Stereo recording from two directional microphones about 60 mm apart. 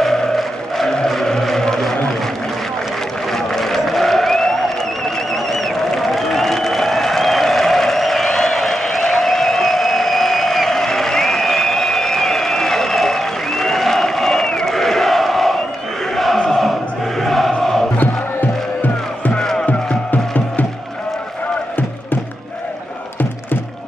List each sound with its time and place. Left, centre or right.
0.0 s vehicle: centre
3.3 s a sound: centre
19.3 s music: centre
20.1 s music: left